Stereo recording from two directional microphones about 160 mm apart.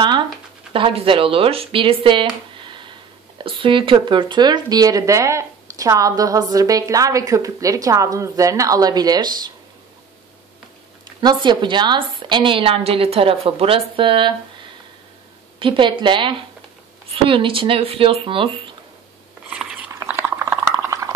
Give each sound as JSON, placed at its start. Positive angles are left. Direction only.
{"t": 0.7, "sound": "speech", "side_deg": -35}
{"t": 11.1, "sound": "a woman's voice", "side_deg": -30}
{"t": 15.6, "sound": "a woman's voice", "side_deg": -30}
{"t": 19.5, "sound": "biting", "side_deg": -5}
{"t": 19.9, "sound": "a sound", "side_deg": -15}